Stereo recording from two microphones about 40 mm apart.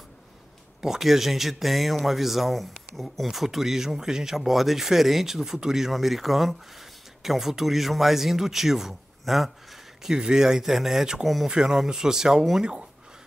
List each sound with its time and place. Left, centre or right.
0.7 s speech: centre
10.0 s speech: centre